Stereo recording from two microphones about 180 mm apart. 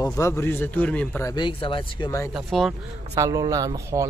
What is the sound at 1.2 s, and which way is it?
Speech, 25° left (ahead or behind).